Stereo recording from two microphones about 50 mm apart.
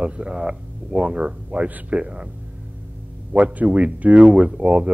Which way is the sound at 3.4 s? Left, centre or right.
Right.